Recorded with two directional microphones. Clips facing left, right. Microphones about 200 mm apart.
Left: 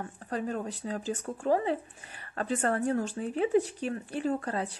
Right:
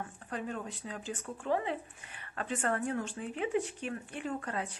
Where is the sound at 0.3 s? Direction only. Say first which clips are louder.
Left 6 dB; 40° left (ahead or behind).